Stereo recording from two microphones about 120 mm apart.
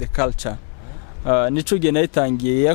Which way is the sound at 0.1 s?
15° left (ahead or behind).